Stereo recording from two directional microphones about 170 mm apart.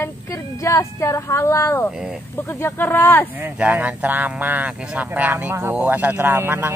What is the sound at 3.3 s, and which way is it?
Speech, 10° right (ahead or behind).